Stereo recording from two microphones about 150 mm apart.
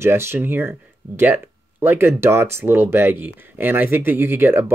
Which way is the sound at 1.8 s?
15° right (ahead or behind).